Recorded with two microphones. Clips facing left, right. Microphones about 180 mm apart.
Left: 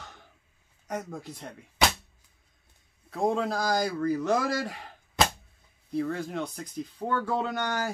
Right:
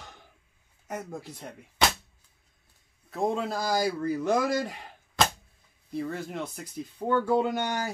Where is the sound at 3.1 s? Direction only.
Centre (ahead or behind).